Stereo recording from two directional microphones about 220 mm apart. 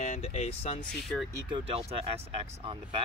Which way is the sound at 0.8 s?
5° left (ahead or behind).